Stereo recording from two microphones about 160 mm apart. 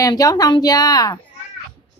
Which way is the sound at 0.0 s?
20° left (ahead or behind).